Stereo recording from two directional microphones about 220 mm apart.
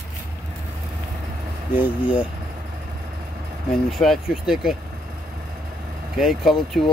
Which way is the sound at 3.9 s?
Centre (ahead or behind).